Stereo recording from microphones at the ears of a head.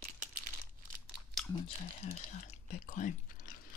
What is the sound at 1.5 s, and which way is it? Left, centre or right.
Speech, left.